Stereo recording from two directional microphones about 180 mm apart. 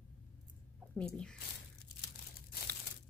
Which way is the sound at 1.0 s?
5° left (ahead or behind).